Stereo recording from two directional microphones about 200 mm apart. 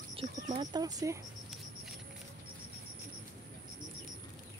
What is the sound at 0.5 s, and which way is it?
Speech, 20° right (ahead or behind).